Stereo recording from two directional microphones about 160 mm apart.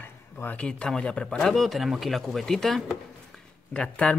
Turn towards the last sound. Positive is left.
turn(degrees=5)  # may be behind; listen again after turning